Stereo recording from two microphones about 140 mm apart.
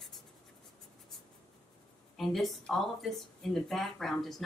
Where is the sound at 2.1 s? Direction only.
Centre (ahead or behind).